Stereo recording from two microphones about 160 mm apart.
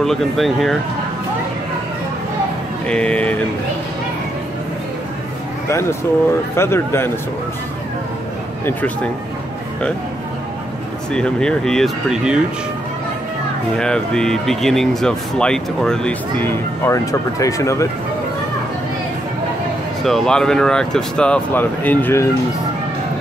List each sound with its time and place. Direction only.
0.0 s speech: centre (ahead or behind)
2.9 s speech: 5° left (ahead or behind)
5.7 s speech: 15° left (ahead or behind)
8.6 s speech: 10° left (ahead or behind)
11.1 s speech: 5° left (ahead or behind)
13.7 s speech: 5° left (ahead or behind)
20.0 s speech: centre (ahead or behind)